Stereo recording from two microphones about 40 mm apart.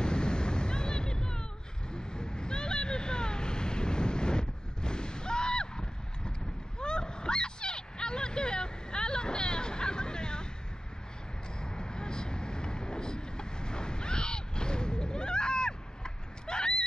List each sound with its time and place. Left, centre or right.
0.0 s waves: left
1.9 s vehicle: left
6.8 s a sound: left
11.6 s vehicle: centre